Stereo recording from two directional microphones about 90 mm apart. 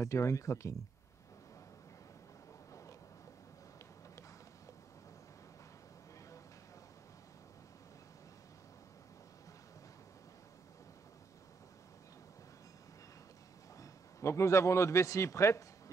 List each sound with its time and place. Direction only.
0.0 s speech: 35° left (ahead or behind)
13.7 s a man's voice: 35° left (ahead or behind)